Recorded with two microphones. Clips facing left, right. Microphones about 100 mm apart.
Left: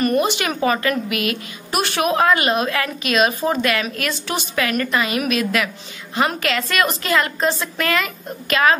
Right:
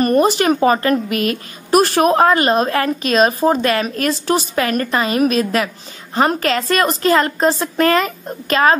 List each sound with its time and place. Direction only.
0.0 s a woman's voice: 40° right (ahead or behind)